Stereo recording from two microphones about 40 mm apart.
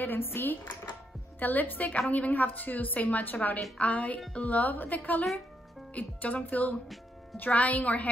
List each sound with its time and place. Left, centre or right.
0.0 s speech: left
1.4 s a woman's voice: left